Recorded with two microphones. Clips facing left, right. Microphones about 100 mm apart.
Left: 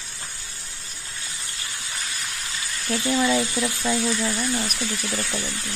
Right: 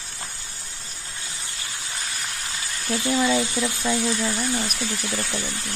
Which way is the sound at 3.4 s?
20° right (ahead or behind).